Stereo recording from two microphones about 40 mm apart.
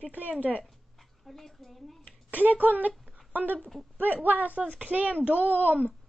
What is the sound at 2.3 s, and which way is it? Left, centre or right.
Speech, right.